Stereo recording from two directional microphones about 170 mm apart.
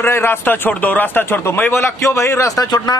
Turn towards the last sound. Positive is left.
turn(degrees=20)  # may be behind; listen again after turning